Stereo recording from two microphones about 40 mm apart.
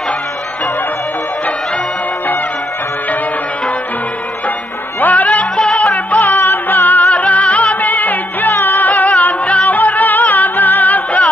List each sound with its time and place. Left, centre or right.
5.0 s music: left
6.2 s music: left